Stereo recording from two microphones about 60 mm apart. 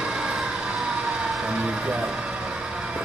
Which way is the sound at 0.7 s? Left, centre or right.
Centre.